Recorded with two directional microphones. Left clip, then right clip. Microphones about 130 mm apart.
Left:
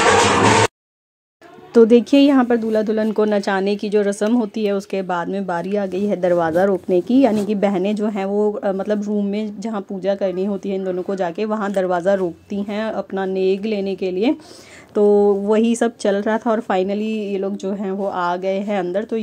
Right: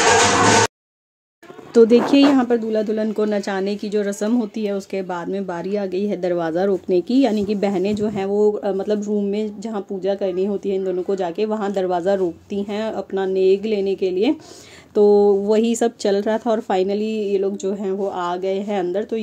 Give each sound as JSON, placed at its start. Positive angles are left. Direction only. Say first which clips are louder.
{"t": 0.2, "sound": "a sound", "louder": "left 1 dB", "side_deg": 0}
{"t": 1.7, "sound": "speech", "louder": "left 1 dB", "side_deg": 10}
{"t": 4.6, "sound": "speech", "louder": "left 3 dB", "side_deg": 25}
{"t": 15.0, "sound": "speech", "louder": "right 1 dB", "side_deg": 15}
{"t": 16.7, "sound": "speech", "louder": "even", "side_deg": 30}